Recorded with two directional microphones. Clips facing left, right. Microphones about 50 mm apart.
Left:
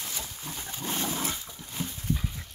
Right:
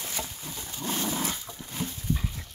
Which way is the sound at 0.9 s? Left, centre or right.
Centre.